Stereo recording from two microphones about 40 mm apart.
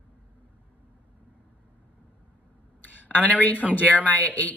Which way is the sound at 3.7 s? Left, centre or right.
Left.